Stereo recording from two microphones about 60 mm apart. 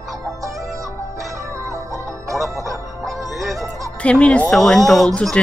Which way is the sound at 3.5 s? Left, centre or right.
Right.